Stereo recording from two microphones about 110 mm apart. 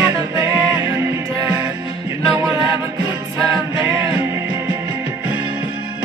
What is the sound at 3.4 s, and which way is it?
Music, 25° right (ahead or behind).